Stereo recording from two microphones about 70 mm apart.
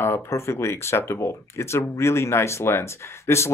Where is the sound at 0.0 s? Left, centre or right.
Left.